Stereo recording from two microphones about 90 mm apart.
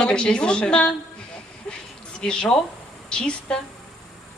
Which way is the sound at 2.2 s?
10° left (ahead or behind).